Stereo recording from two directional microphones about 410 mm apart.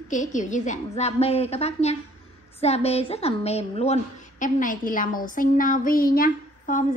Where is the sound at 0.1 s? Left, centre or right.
Centre.